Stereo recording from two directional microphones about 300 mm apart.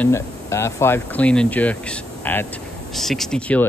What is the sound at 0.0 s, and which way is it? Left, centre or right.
Speech, centre.